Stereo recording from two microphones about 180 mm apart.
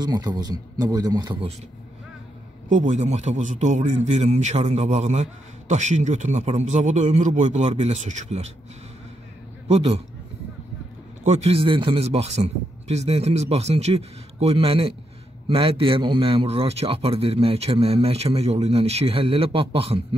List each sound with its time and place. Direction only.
0.0 s speech: 20° right (ahead or behind)
2.7 s a man's voice: 45° right (ahead or behind)
9.7 s a man's voice: 35° right (ahead or behind)
11.2 s a man's voice: 35° right (ahead or behind)